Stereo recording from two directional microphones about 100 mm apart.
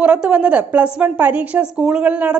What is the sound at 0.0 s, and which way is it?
A woman's voice, 10° right (ahead or behind).